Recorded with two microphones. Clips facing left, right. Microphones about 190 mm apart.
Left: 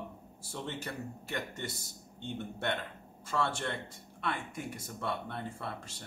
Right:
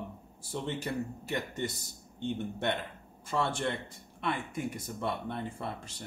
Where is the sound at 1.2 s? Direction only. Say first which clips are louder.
Right 4 dB; 20° right (ahead or behind).